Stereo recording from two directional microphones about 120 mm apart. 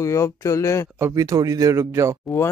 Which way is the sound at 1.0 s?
30° right (ahead or behind).